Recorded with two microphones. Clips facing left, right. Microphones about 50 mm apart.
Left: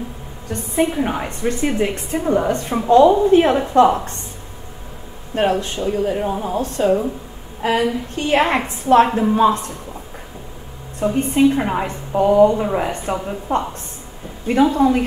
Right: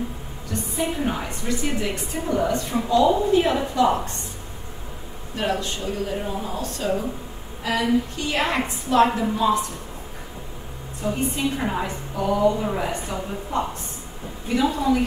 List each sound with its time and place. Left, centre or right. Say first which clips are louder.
0.5 s a woman's voice: left 7 dB; left
5.3 s a woman's voice: left 7 dB; left
7.6 s a woman's voice: left 3 dB; left
11.0 s a woman's voice: left 9 dB; left